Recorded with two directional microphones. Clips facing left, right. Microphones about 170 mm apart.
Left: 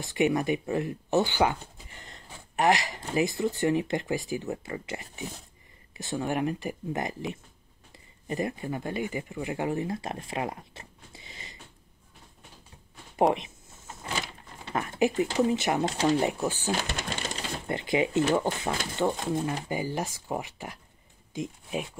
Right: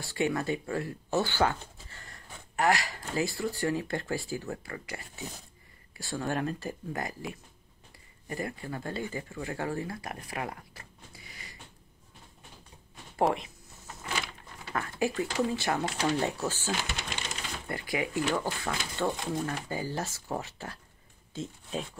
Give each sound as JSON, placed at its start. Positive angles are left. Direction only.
{"t": 0.0, "sound": "speech", "side_deg": 20}
{"t": 13.1, "sound": "drawer open or close", "side_deg": 20}
{"t": 14.6, "sound": "speech", "side_deg": 20}